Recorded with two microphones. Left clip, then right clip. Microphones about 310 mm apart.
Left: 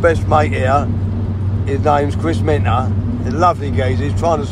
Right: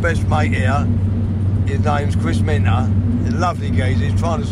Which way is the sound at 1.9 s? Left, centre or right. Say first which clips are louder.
Left 7 dB; left.